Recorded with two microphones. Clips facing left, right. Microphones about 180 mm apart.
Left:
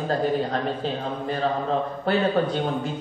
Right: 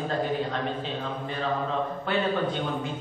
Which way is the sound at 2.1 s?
40° left (ahead or behind).